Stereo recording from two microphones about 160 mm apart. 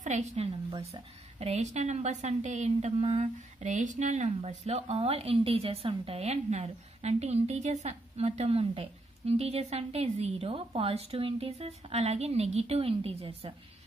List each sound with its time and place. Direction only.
0.0 s a woman's voice: 45° right (ahead or behind)
0.7 s a woman's voice: 35° right (ahead or behind)